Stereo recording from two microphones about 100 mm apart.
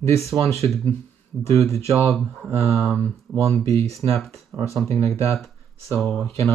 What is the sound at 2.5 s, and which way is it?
Speech, 90° right.